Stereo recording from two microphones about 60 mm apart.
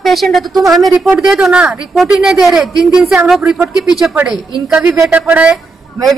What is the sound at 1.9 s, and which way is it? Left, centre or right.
Speech, centre.